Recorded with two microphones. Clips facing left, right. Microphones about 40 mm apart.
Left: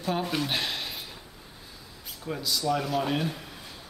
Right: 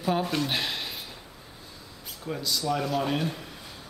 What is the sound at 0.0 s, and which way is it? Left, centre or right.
Speech, centre.